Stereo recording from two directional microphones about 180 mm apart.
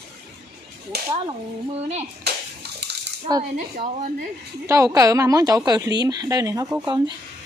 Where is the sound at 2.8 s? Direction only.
70° right (ahead or behind).